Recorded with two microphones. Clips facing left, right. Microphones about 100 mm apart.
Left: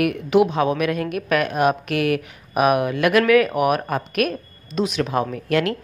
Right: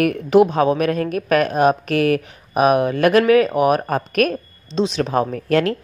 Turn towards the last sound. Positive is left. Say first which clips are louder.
# right 3 dB
turn(degrees=-35)  # may be behind; listen again after turning